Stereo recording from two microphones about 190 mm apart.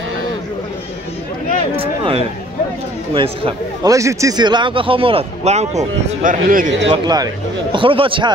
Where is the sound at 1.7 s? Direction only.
30° right (ahead or behind).